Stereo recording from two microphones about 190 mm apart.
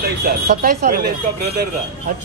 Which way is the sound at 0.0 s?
55° right (ahead or behind).